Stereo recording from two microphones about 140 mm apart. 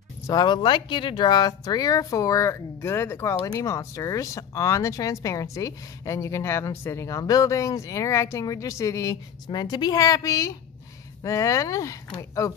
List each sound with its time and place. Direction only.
0.3 s speech: 30° left (ahead or behind)